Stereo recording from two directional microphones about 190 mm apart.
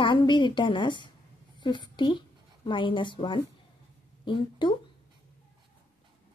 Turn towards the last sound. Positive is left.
turn(degrees=25)  # may be behind; listen again after turning